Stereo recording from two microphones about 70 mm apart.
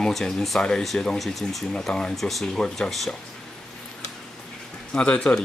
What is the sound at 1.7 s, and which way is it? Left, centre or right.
Speech, centre.